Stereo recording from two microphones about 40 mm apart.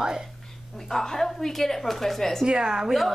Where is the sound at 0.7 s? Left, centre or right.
Centre.